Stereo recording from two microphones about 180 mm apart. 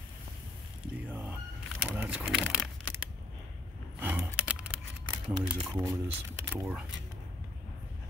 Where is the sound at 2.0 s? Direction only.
5° right (ahead or behind).